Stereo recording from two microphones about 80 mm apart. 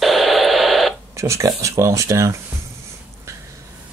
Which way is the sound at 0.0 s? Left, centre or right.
Centre.